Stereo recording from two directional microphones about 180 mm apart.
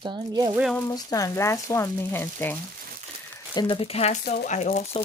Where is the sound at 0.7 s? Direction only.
20° left (ahead or behind).